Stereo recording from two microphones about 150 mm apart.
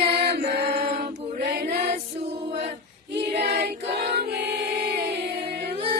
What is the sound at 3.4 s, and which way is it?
Choir, 90° right.